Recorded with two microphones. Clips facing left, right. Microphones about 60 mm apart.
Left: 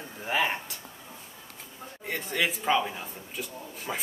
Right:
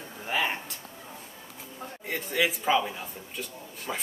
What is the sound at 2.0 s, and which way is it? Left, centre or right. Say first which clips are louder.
Speech: right 1 dB; centre.